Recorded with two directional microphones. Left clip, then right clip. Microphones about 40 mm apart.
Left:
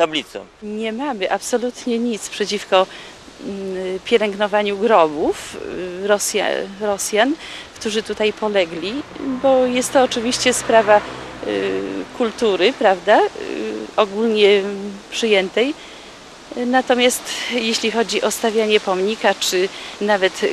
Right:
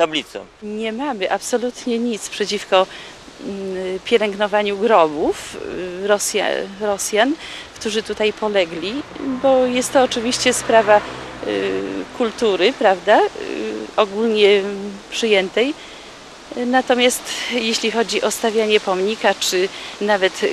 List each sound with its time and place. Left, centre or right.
0.2 s speech: right